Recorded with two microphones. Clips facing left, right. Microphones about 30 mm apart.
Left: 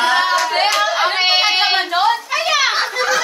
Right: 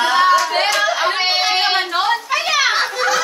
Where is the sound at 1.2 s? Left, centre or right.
Left.